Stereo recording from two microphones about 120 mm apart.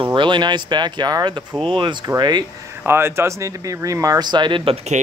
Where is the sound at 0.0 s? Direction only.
40° right (ahead or behind).